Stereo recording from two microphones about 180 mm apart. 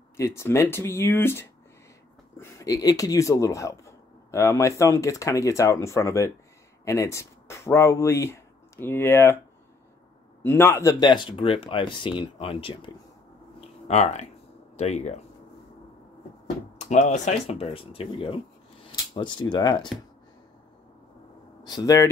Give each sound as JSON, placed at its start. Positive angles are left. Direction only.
{"t": 0.2, "sound": "speech", "side_deg": 15}
{"t": 10.4, "sound": "speech", "side_deg": 15}
{"t": 13.6, "sound": "a sound", "side_deg": 40}
{"t": 14.8, "sound": "speech", "side_deg": 40}
{"t": 16.7, "sound": "speech", "side_deg": 40}
{"t": 21.6, "sound": "speech", "side_deg": 20}